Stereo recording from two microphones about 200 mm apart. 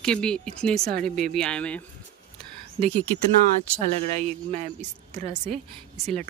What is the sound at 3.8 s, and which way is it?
Speech, 35° right (ahead or behind).